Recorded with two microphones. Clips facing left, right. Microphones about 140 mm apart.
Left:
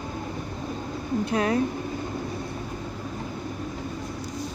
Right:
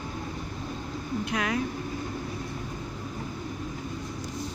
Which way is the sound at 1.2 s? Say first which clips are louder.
Left 6 dB; 35° left (ahead or behind).